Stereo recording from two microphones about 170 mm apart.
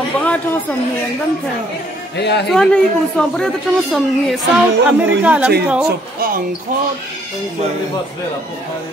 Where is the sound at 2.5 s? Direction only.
5° left (ahead or behind).